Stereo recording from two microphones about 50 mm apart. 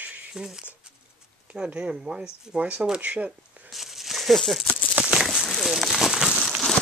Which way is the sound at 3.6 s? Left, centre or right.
Centre.